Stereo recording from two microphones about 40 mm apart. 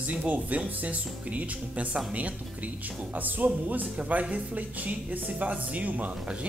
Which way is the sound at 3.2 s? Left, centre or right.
Right.